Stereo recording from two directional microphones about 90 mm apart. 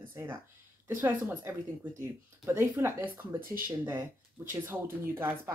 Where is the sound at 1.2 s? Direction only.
35° right (ahead or behind).